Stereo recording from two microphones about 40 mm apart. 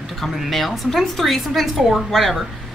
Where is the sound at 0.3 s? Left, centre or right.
Centre.